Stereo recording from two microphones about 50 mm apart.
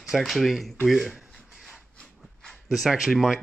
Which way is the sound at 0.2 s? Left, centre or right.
Centre.